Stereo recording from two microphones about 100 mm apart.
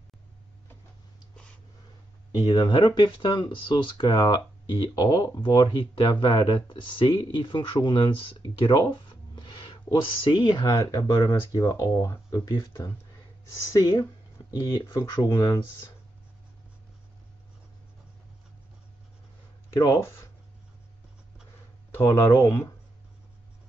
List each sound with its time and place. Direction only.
2.3 s speech: 45° left (ahead or behind)
21.9 s speech: 30° left (ahead or behind)